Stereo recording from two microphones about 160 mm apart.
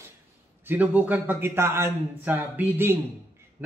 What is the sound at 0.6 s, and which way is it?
Speech, 10° right (ahead or behind).